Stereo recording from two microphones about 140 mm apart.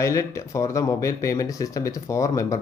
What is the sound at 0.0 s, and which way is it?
Speech, 20° left (ahead or behind).